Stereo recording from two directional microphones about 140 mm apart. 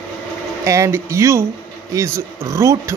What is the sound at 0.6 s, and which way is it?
A man's voice, 20° right (ahead or behind).